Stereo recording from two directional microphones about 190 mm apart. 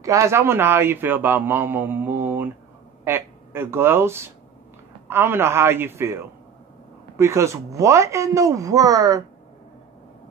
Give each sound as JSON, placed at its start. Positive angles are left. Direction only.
{"t": 0.0, "sound": "a man's voice", "side_deg": -15}